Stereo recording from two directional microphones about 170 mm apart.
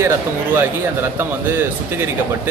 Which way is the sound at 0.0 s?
10° right (ahead or behind).